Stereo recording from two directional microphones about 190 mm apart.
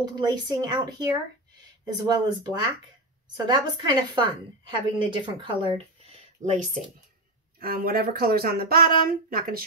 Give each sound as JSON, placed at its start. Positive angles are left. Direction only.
{"t": 0.0, "sound": "a woman's voice", "side_deg": -20}
{"t": 7.5, "sound": "speech", "side_deg": -50}